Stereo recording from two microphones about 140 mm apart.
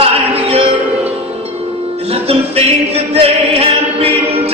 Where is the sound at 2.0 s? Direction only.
45° right (ahead or behind).